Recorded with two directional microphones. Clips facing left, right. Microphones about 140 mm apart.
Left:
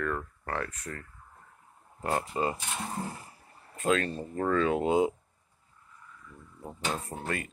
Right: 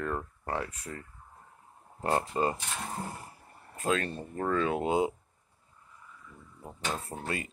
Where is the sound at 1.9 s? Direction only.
30° right (ahead or behind).